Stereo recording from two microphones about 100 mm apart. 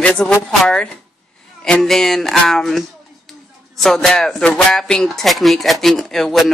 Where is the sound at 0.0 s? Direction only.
15° left (ahead or behind).